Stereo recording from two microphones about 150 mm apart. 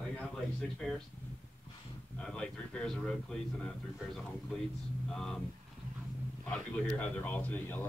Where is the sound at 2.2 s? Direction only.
5° left (ahead or behind).